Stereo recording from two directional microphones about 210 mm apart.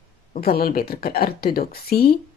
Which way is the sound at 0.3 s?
45° left (ahead or behind).